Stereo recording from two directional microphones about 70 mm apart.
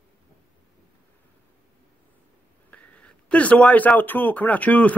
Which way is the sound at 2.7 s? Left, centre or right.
Centre.